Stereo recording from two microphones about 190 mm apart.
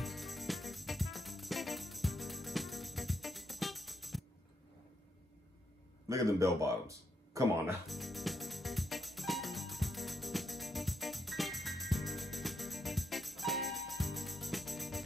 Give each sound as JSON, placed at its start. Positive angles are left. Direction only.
{"t": 0.0, "sound": "music", "side_deg": 0}
{"t": 6.0, "sound": "speech", "side_deg": -15}
{"t": 7.8, "sound": "music", "side_deg": 0}